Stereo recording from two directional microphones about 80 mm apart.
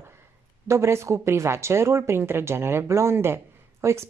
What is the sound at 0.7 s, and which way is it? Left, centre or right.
Speech, right.